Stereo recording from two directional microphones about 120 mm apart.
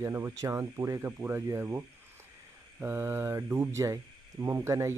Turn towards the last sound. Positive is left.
turn(degrees=-25)  # may be behind; listen again after turning